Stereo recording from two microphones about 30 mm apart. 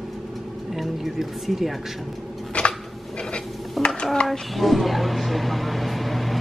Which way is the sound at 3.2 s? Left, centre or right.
Left.